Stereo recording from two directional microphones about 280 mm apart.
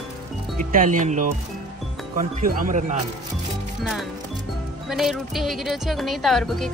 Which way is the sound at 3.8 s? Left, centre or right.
Centre.